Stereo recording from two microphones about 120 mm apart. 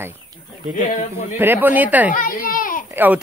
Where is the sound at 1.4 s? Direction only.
15° right (ahead or behind).